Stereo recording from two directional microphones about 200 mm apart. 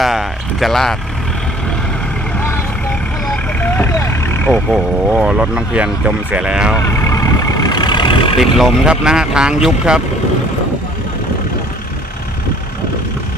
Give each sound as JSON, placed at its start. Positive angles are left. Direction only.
{"t": 0.0, "sound": "a sound", "side_deg": 0}
{"t": 3.6, "sound": "vehicle", "side_deg": 10}
{"t": 4.6, "sound": "speech", "side_deg": 0}
{"t": 6.8, "sound": "vehicle", "side_deg": 15}
{"t": 8.4, "sound": "speech", "side_deg": 0}